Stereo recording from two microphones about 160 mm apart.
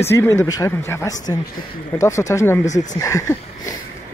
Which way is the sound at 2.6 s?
45° left (ahead or behind).